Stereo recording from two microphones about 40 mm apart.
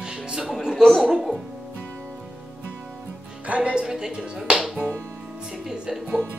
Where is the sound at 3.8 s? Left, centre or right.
Centre.